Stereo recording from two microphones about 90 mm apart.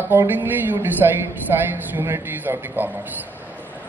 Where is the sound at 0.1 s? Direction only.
20° right (ahead or behind).